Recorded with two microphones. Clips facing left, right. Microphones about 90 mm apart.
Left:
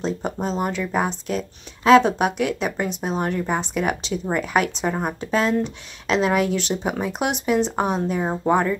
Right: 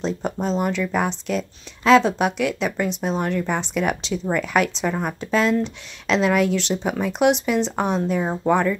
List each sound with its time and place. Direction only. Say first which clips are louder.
0.0 s speech: right 1 dB; 5° left (ahead or behind)
0.7 s speech: right 1 dB; 40° left (ahead or behind)
7.7 s speech: right 1 dB; 5° left (ahead or behind)